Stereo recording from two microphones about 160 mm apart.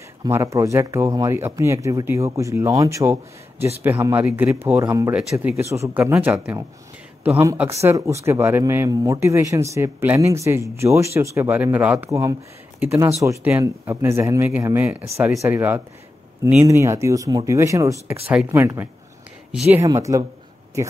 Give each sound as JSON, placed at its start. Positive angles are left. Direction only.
{"t": 0.2, "sound": "speech", "side_deg": -20}
{"t": 6.1, "sound": "speech", "side_deg": -5}
{"t": 18.3, "sound": "speech", "side_deg": -5}
{"t": 18.6, "sound": "speech", "side_deg": -20}
{"t": 19.5, "sound": "speech", "side_deg": -5}
{"t": 19.8, "sound": "speech", "side_deg": -20}